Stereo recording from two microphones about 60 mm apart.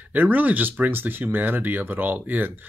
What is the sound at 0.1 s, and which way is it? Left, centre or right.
Speech, right.